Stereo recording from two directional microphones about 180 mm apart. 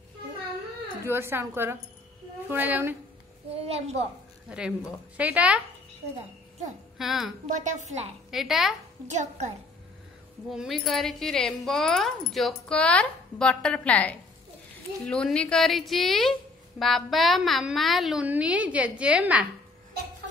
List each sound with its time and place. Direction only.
1.0 s a woman's voice: 15° right (ahead or behind)
3.6 s a woman's voice: 35° right (ahead or behind)
4.5 s a woman's voice: 5° right (ahead or behind)
7.0 s a woman's voice: centre (ahead or behind)
7.4 s a woman's voice: 40° right (ahead or behind)
8.3 s a woman's voice: centre (ahead or behind)
9.0 s a woman's voice: 40° right (ahead or behind)
10.5 s a woman's voice: centre (ahead or behind)